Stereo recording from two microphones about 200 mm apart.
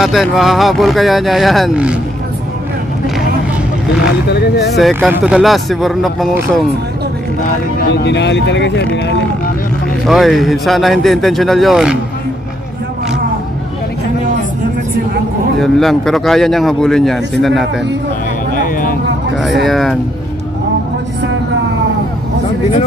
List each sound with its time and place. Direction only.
0.0 s speech: centre (ahead or behind)
4.7 s speech: centre (ahead or behind)
7.9 s speech: 60° left (ahead or behind)
10.0 s speech: centre (ahead or behind)
15.6 s speech: centre (ahead or behind)
18.5 s a sound: 45° left (ahead or behind)
19.3 s speech: centre (ahead or behind)